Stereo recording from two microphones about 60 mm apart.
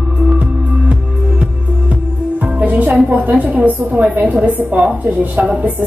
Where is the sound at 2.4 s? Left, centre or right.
Right.